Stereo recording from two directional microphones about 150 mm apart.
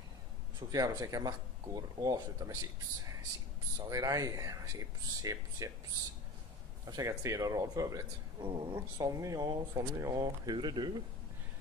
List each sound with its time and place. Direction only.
0.6 s speech: 25° right (ahead or behind)
3.7 s speech: 25° right (ahead or behind)
6.9 s speech: 20° right (ahead or behind)